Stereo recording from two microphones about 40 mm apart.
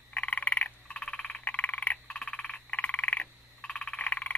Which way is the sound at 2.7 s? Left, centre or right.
Left.